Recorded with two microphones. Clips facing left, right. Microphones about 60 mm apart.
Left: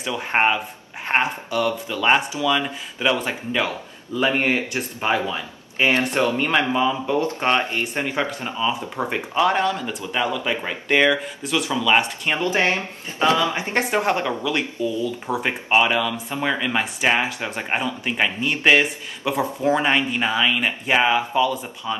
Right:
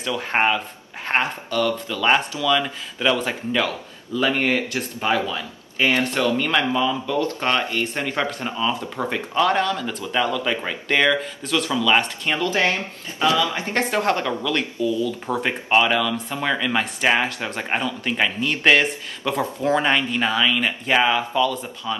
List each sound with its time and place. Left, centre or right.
0.0 s speech: centre
4.1 s speech: left
12.4 s speech: left
14.8 s speech: left
15.2 s speech: centre